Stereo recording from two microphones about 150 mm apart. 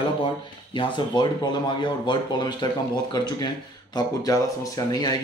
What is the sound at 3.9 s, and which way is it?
Speech, 25° left (ahead or behind).